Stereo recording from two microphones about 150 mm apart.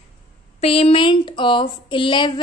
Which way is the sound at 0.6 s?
40° left (ahead or behind).